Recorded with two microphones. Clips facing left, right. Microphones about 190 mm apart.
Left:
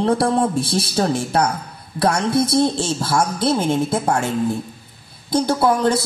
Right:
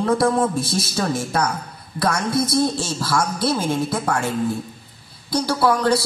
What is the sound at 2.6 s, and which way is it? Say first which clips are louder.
A man's voice: left 3 dB; 30° left (ahead or behind).